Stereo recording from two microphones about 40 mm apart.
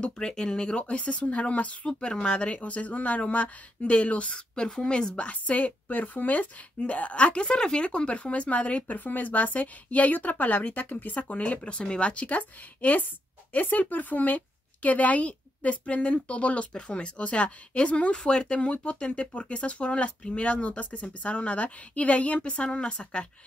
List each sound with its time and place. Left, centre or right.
0.3 s a woman's voice: centre; by 1.9 s left
1.9 s a woman's voice: left
4.3 s a woman's voice: centre
18.2 s speech: centre
18.5 s a woman's voice: left